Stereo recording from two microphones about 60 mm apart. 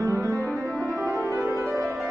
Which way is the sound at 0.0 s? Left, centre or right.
Right.